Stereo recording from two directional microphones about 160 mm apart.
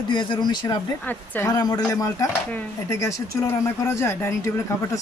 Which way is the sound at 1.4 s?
25° left (ahead or behind).